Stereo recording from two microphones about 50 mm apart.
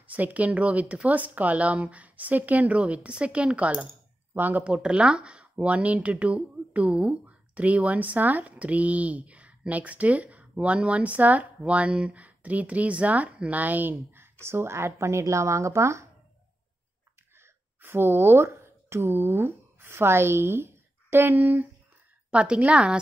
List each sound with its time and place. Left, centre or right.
0.0 s speech: right
4.8 s speech: right
14.4 s speech: right
17.4 s a woman's voice: right
22.3 s speech: right